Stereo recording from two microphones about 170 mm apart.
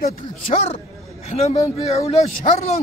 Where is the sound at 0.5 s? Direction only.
40° left (ahead or behind).